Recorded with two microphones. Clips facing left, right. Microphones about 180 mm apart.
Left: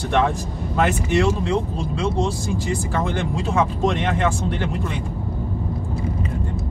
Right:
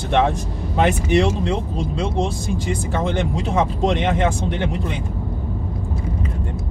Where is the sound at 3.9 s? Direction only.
20° right (ahead or behind).